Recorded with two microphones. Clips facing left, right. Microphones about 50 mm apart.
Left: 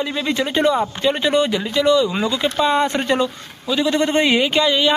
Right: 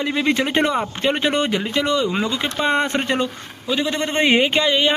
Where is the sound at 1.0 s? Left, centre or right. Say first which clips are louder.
Left 1 dB; right.